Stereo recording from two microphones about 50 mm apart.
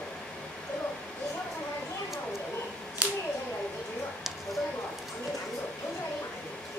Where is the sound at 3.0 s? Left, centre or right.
Right.